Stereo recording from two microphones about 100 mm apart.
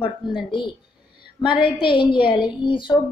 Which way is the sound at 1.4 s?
55° left (ahead or behind).